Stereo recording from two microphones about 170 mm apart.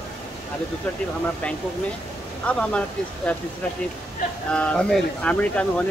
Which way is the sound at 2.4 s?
5° left (ahead or behind).